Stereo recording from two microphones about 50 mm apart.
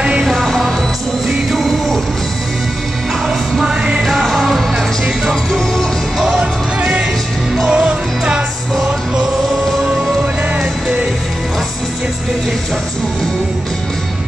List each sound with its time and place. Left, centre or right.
0.2 s music: centre
4.0 s music: centre
5.3 s music: centre
6.2 s music: centre